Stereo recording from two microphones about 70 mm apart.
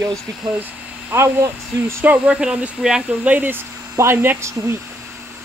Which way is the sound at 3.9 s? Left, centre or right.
Right.